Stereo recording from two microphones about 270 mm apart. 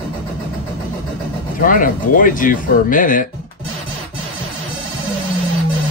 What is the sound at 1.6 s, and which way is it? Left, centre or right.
Speech, left.